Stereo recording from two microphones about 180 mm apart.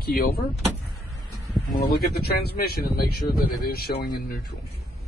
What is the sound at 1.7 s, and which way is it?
Speech, 60° left (ahead or behind).